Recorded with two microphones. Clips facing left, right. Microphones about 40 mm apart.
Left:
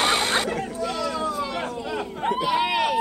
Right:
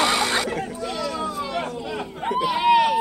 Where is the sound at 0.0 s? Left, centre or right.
Left.